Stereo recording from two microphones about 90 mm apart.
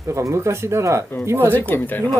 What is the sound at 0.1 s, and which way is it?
Speech, 30° right (ahead or behind).